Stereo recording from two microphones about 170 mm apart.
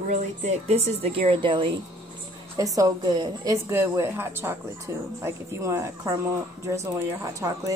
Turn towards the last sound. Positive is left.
turn(degrees=-20)  # may be behind; listen again after turning